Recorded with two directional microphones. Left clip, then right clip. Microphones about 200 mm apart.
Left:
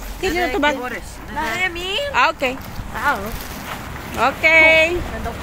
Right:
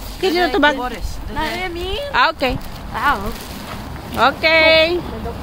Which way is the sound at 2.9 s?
45° right (ahead or behind).